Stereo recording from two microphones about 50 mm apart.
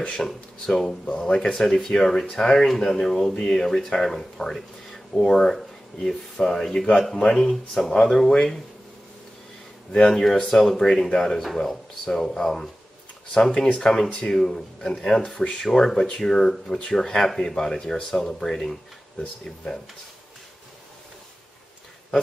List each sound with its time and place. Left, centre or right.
0.0 s speech: centre
1.0 s speech: centre
7.4 s speech: centre
7.9 s speech: centre
9.9 s speech: centre